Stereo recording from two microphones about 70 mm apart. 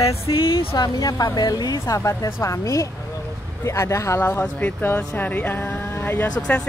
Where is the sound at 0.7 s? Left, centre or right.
Left.